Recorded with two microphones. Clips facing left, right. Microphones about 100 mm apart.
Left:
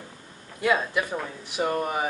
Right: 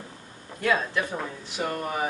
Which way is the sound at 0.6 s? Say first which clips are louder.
Left 1 dB; 10° left (ahead or behind).